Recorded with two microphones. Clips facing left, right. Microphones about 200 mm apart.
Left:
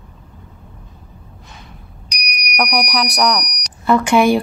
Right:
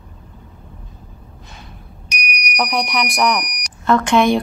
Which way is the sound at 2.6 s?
Centre (ahead or behind).